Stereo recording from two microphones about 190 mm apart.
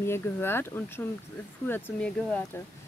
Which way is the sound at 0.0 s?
10° left (ahead or behind).